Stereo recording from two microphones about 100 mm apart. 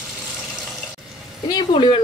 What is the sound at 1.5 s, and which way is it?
Speech, 55° left (ahead or behind).